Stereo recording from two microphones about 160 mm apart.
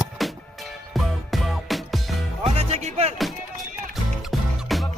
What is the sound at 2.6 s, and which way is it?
Music, 45° right (ahead or behind).